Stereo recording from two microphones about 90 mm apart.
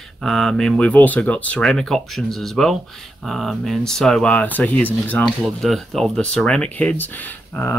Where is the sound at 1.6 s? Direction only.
5° left (ahead or behind).